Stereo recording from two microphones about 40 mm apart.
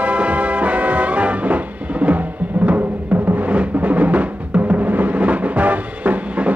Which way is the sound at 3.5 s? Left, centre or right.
Right.